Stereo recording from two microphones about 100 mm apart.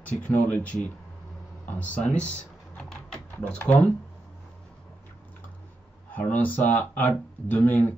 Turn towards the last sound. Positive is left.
turn(degrees=20)  # may be behind; listen again after turning